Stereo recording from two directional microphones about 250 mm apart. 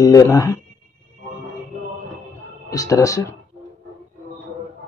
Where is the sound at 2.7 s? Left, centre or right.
Centre.